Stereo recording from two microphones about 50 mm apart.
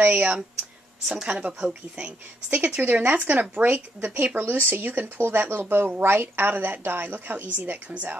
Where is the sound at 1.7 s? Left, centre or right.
Right.